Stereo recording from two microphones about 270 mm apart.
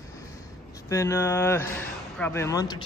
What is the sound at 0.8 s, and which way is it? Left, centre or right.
Speech, centre.